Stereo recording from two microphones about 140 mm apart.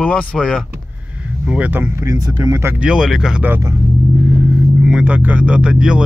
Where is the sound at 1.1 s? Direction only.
10° right (ahead or behind).